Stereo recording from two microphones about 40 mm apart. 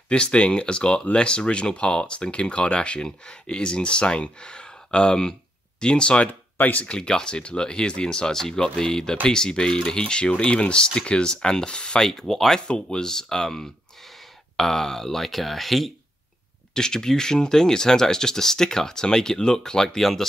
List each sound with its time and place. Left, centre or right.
0.1 s speech: left
6.2 s speech: left
6.9 s speech: left
12.0 s speech: centre
16.7 s speech: centre